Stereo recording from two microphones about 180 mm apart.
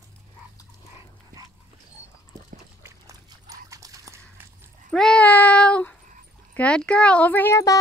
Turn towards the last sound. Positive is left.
turn(degrees=15)  # may be behind; listen again after turning